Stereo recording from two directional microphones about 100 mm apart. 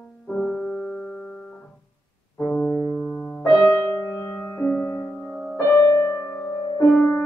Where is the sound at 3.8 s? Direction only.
10° left (ahead or behind).